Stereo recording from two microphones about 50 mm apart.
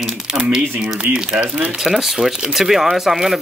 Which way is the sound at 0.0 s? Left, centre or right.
Centre.